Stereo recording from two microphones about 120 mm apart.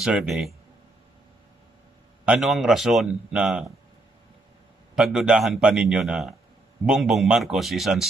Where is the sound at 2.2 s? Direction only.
Centre (ahead or behind).